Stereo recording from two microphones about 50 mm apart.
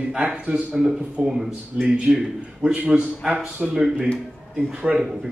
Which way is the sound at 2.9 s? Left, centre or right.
Right.